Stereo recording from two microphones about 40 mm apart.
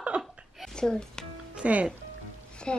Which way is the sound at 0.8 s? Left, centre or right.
Centre.